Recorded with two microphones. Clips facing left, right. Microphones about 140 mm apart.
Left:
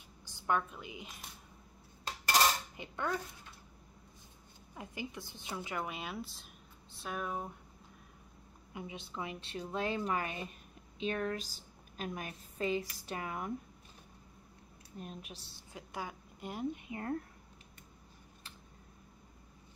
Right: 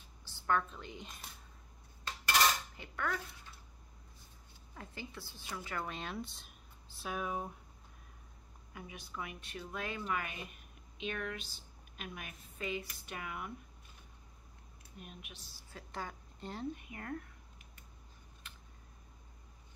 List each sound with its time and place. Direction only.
0.2 s a woman's voice: 15° left (ahead or behind)
2.8 s a woman's voice: 20° left (ahead or behind)
4.7 s speech: 15° left (ahead or behind); by 7.5 s centre (ahead or behind)
8.7 s a woman's voice: 25° left (ahead or behind)
15.0 s speech: 35° left (ahead or behind)
15.7 s speech: 10° left (ahead or behind)
18.4 s a sound: 35° left (ahead or behind)